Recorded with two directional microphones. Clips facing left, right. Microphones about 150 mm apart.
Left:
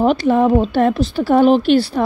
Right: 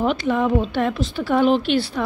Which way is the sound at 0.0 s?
35° left (ahead or behind).